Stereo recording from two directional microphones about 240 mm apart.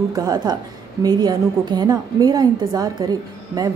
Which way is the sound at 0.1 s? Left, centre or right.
Centre.